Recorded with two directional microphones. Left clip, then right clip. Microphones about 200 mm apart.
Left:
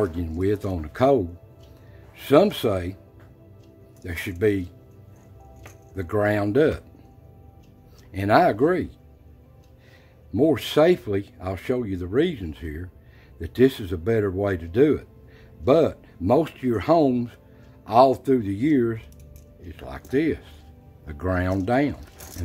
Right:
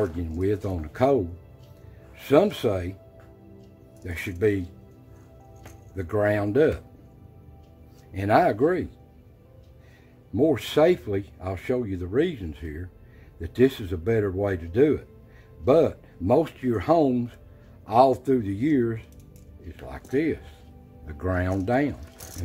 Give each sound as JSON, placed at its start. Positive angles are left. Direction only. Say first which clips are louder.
{"t": 0.0, "sound": "speech", "louder": "left 2 dB", "side_deg": 20}
{"t": 4.0, "sound": "speech", "louder": "left 1 dB", "side_deg": 15}
{"t": 5.9, "sound": "speech", "louder": "left 1 dB", "side_deg": 15}
{"t": 8.1, "sound": "speech", "louder": "left 2 dB", "side_deg": 15}
{"t": 10.3, "sound": "speech", "louder": "left 2 dB", "side_deg": 15}